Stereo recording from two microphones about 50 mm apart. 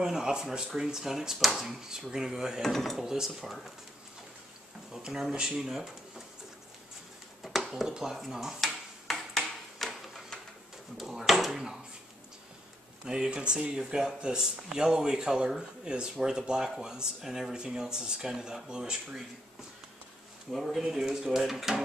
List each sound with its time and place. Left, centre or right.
0.0 s speech: centre
2.6 s speech: centre
3.0 s speech: centre
4.9 s speech: centre
7.9 s speech: centre
9.0 s a sound: centre
11.0 s speech: centre
13.0 s speech: centre
20.5 s speech: centre